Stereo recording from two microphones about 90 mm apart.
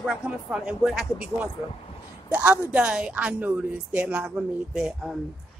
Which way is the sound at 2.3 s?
15° right (ahead or behind).